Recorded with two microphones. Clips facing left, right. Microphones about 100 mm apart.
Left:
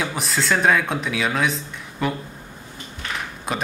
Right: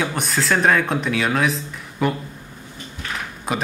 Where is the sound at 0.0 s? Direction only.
Centre (ahead or behind).